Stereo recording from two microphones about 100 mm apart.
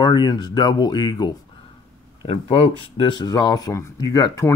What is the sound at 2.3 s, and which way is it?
Speech, 65° left (ahead or behind).